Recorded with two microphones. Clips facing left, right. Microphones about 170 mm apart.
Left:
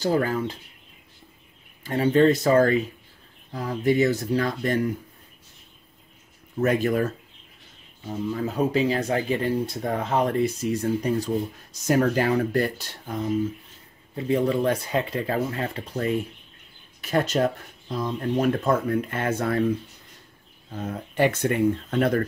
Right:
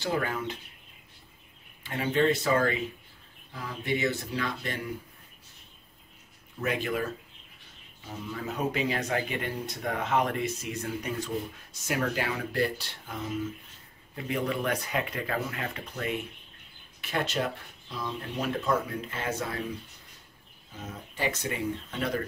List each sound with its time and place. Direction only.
0.0 s speech: 35° left (ahead or behind)
1.8 s speech: 40° left (ahead or behind)
6.6 s speech: 45° left (ahead or behind)
8.4 s speech: 35° left (ahead or behind); by 19.6 s 55° left (ahead or behind)
20.7 s speech: 60° left (ahead or behind)